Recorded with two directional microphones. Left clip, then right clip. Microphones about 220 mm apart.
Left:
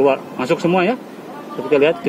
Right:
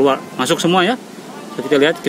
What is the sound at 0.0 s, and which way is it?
Speech, 45° right (ahead or behind).